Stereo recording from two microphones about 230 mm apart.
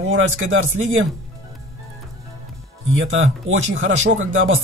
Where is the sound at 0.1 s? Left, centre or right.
Right.